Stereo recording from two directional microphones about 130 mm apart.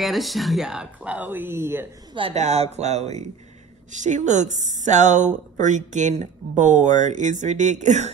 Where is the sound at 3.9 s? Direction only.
70° right (ahead or behind).